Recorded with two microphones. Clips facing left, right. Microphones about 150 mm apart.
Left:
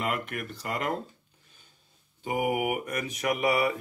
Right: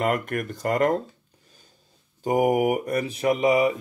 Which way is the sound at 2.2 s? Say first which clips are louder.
Right 7 dB; 40° right (ahead or behind).